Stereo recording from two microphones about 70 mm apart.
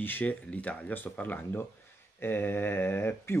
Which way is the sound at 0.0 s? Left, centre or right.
Left.